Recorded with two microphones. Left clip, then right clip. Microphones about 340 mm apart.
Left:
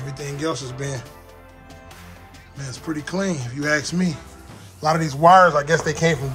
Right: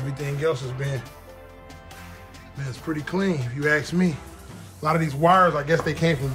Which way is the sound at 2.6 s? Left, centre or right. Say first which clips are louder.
Left 1 dB; centre.